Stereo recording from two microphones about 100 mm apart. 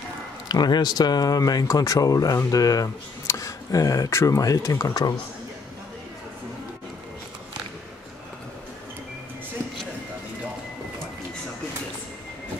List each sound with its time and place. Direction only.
0.5 s speech: 45° left (ahead or behind)